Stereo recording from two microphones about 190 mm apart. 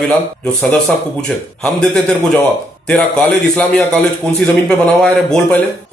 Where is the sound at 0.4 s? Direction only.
5° left (ahead or behind).